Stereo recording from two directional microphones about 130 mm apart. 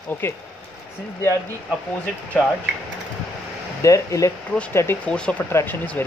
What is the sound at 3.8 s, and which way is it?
Speech, 25° left (ahead or behind).